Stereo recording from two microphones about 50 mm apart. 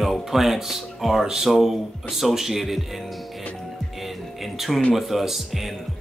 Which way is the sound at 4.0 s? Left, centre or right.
Centre.